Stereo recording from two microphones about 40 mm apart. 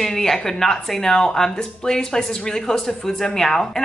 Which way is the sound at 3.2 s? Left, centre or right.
Centre.